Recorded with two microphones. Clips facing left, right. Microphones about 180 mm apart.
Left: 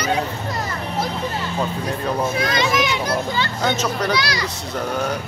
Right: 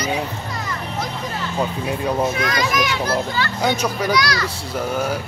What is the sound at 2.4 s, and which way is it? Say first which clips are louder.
A child's voice: left 1 dB; 25° left (ahead or behind).